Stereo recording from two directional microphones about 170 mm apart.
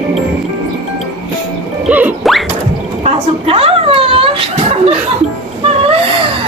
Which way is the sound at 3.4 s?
35° right (ahead or behind).